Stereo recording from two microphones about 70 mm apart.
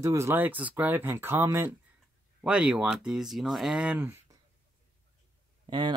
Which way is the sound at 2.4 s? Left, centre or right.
Centre.